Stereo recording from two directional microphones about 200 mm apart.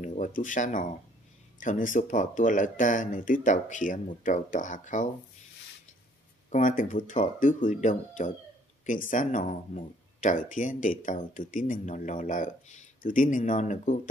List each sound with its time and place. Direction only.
0.0 s speech: 40° left (ahead or behind)
6.5 s speech: 40° left (ahead or behind)